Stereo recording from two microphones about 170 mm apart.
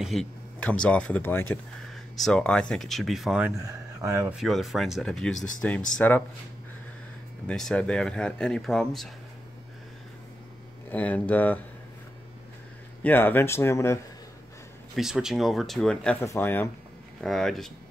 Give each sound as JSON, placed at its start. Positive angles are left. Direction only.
{"t": 0.0, "sound": "speech", "side_deg": 0}
{"t": 3.5, "sound": "speech", "side_deg": -20}
{"t": 4.3, "sound": "speech", "side_deg": 0}
{"t": 7.4, "sound": "speech", "side_deg": 5}
{"t": 10.9, "sound": "speech", "side_deg": 10}
{"t": 13.0, "sound": "speech", "side_deg": 10}
{"t": 15.0, "sound": "speech", "side_deg": -5}
{"t": 17.2, "sound": "speech", "side_deg": 0}